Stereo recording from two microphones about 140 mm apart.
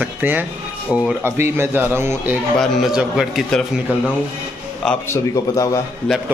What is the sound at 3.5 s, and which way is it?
Speech, 5° left (ahead or behind).